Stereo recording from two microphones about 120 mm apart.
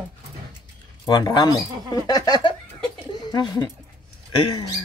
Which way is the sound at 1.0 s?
30° left (ahead or behind).